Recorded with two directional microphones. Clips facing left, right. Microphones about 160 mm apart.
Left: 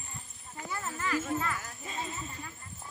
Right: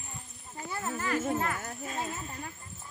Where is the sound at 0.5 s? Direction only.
35° right (ahead or behind).